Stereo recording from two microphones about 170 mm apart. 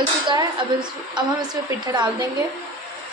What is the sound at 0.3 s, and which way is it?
A woman's voice, 25° right (ahead or behind).